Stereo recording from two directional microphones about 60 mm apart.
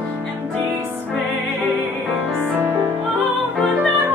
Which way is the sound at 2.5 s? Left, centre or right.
Right.